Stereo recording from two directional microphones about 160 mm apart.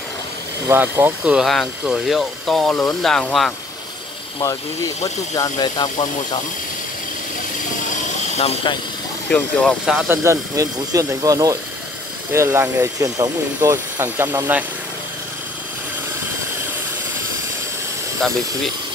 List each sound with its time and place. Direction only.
0.7 s speech: 15° right (ahead or behind); by 3.5 s 5° left (ahead or behind)
5.3 s speech: 25° left (ahead or behind)
8.4 s speech: 40° left (ahead or behind)
9.3 s speech: 5° left (ahead or behind)
9.8 s speech: 5° right (ahead or behind)
10.2 s speech: 20° right (ahead or behind)